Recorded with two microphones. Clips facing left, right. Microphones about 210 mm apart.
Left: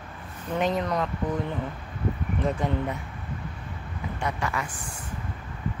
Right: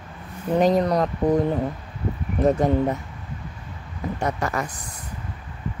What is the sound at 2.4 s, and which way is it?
Speech, 40° right (ahead or behind).